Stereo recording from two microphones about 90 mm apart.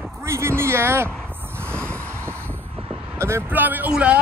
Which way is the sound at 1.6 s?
15° left (ahead or behind).